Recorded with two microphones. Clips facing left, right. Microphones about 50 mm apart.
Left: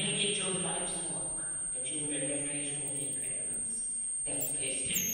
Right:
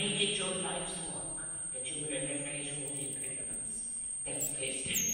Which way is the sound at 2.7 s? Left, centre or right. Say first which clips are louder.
Even; centre.